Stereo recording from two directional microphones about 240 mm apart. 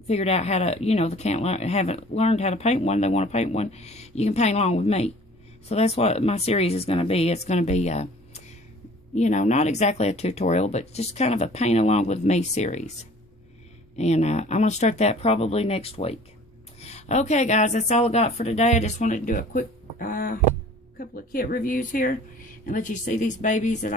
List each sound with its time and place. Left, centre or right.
0.1 s speech: left
13.9 s speech: left